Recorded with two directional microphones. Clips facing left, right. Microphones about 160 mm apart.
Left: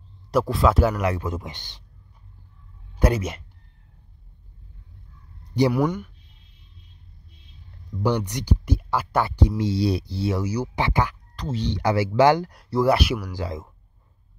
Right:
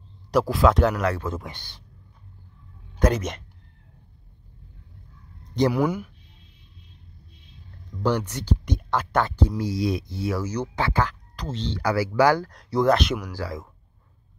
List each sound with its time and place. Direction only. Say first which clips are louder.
0.3 s speech: right 1 dB; centre (ahead or behind); by 1.8 s 20° left (ahead or behind)
3.0 s speech: even; 10° left (ahead or behind)
5.7 s speech: left 1 dB; 5° right (ahead or behind)
8.3 s speech: left 1 dB; 15° left (ahead or behind)
9.6 s speech: left 2 dB; 30° left (ahead or behind)
10.4 s speech: left 1 dB; 10° left (ahead or behind)
12.5 s speech: even; 5° left (ahead or behind)
13.4 s speech: left 1 dB; 25° left (ahead or behind)